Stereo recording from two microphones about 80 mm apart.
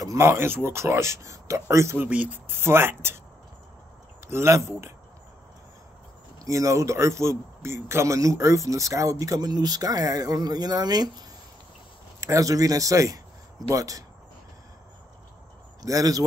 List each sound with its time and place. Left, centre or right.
0.0 s speech: right
2.0 s speech: centre
4.3 s speech: right
6.4 s speech: right
12.2 s speech: right
15.8 s speech: right